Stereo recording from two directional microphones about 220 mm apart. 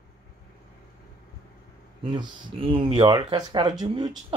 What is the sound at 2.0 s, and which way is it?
Speech, 20° right (ahead or behind).